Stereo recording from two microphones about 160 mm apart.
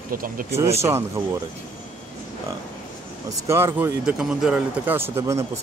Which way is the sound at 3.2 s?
15° right (ahead or behind).